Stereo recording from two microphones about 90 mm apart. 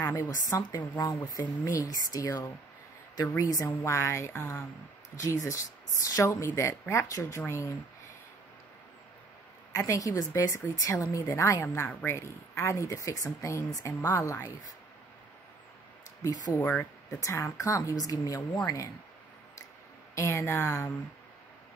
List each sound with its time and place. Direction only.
0.0 s speech: 30° left (ahead or behind)
9.8 s speech: 35° left (ahead or behind)
14.0 s speech: 30° left (ahead or behind)
16.5 s speech: 20° left (ahead or behind)
17.2 s speech: 35° left (ahead or behind)
20.2 s speech: 30° left (ahead or behind)